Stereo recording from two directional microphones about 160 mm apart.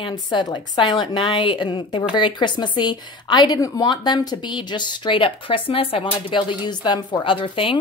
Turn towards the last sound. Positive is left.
turn(degrees=35)  # may be behind; listen again after turning